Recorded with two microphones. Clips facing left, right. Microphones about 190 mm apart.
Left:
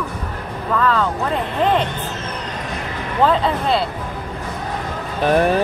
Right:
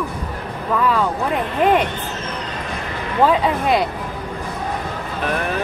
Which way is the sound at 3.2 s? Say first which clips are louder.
Right 1 dB; 10° right (ahead or behind).